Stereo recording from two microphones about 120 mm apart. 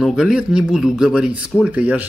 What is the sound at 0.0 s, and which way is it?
Speech, 5° right (ahead or behind).